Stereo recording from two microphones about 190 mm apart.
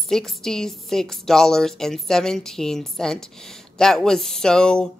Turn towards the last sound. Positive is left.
turn(degrees=5)  # may be behind; listen again after turning